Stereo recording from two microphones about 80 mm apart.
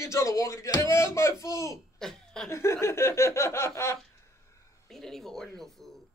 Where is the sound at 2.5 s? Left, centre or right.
Left.